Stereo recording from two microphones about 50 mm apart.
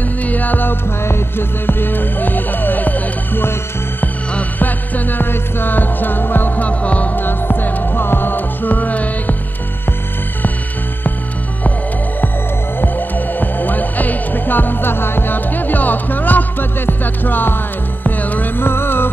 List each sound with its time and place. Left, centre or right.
0.2 s music: left
4.6 s music: left
7.2 s music: left
12.8 s music: left
18.0 s hum: left
18.6 s music: left